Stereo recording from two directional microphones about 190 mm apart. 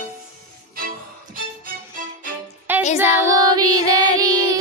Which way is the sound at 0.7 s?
50° right (ahead or behind).